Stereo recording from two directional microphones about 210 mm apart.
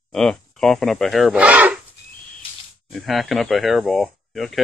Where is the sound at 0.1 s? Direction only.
5° left (ahead or behind).